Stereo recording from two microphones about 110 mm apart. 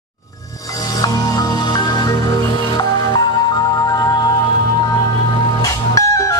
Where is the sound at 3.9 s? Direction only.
35° left (ahead or behind).